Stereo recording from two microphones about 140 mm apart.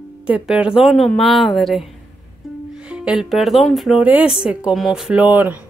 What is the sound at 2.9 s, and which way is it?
A woman's voice, 5° right (ahead or behind).